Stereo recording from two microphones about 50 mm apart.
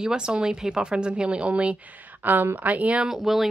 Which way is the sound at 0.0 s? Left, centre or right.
Centre.